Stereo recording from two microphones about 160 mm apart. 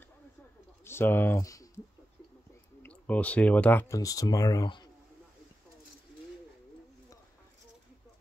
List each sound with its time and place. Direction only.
0.8 s speech: 15° left (ahead or behind)
2.8 s speech: 10° left (ahead or behind)
3.9 s speech: 20° left (ahead or behind)